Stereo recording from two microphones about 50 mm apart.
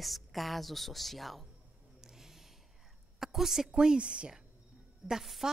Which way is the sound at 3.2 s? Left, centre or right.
Centre.